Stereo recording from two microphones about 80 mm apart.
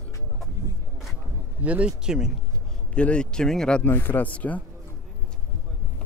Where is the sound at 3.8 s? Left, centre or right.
Left.